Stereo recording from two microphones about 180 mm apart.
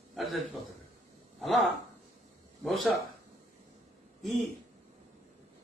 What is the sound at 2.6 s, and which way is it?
Speech, centre (ahead or behind).